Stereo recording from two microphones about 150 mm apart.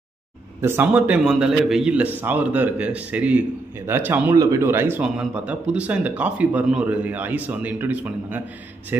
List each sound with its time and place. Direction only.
0.6 s a man's voice: 10° right (ahead or behind)